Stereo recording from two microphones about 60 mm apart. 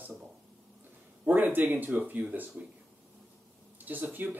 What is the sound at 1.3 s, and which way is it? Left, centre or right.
Speech, right.